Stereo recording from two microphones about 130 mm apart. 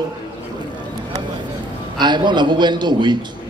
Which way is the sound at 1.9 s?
35° right (ahead or behind).